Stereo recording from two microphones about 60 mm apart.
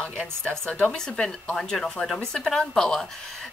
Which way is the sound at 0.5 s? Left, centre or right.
Left.